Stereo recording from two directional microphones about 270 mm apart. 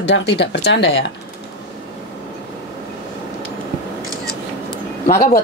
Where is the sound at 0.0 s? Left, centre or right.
Left.